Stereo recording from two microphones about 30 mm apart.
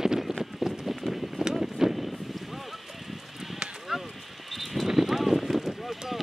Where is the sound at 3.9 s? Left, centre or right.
Centre.